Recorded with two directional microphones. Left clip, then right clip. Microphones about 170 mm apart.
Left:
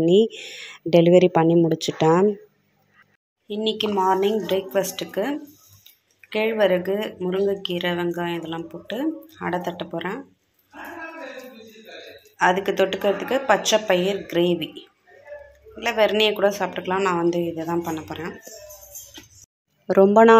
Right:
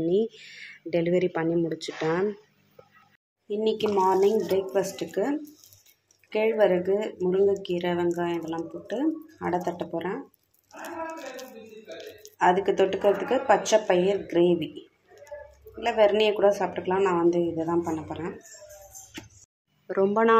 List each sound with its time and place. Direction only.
0.0 s speech: 35° left (ahead or behind)
3.4 s speech: centre (ahead or behind)
12.4 s speech: centre (ahead or behind)
15.8 s speech: centre (ahead or behind)
19.9 s speech: 30° left (ahead or behind)